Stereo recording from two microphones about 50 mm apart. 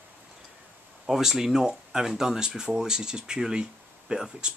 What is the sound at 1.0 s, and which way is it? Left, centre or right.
Speech, centre.